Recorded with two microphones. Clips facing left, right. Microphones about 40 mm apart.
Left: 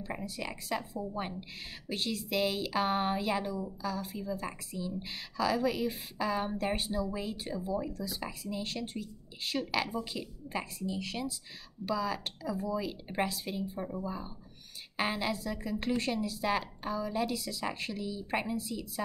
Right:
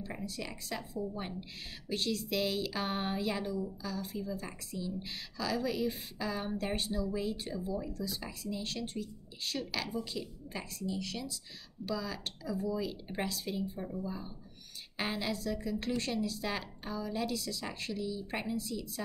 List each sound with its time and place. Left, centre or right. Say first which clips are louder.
0.1 s a woman's voice: left 6 dB; centre